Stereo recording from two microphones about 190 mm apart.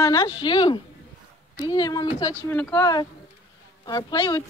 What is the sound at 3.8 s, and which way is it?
Speech, 20° left (ahead or behind).